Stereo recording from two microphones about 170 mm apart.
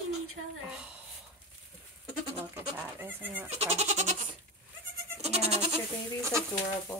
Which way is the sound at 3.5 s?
40° right (ahead or behind).